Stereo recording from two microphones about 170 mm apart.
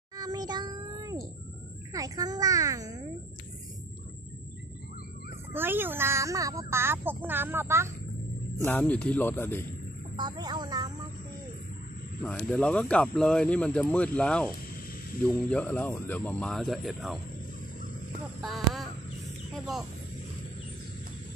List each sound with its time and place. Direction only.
0.2 s a sound: 25° right (ahead or behind)
1.9 s a child's voice: 20° right (ahead or behind)
5.5 s speech: 10° right (ahead or behind)
8.6 s speech: 10° left (ahead or behind)
10.1 s speech: 25° right (ahead or behind)
12.2 s speech: 10° left (ahead or behind)
18.4 s a sound: centre (ahead or behind)
19.5 s speech: centre (ahead or behind)